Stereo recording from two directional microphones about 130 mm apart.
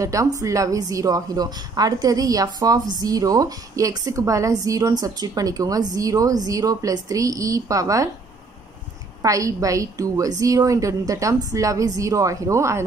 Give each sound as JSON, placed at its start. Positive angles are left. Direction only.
{"t": 0.0, "sound": "a woman's voice", "side_deg": -25}
{"t": 9.2, "sound": "a woman's voice", "side_deg": -25}